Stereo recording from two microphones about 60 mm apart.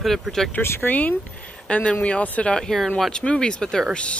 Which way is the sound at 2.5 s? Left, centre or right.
Centre.